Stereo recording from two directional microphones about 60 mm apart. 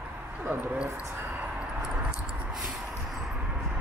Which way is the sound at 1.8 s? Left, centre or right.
Centre.